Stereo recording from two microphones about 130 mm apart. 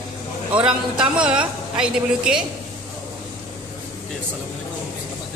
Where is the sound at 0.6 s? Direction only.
5° right (ahead or behind).